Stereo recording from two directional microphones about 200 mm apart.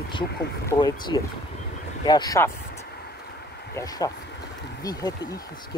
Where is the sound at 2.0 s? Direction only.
20° left (ahead or behind).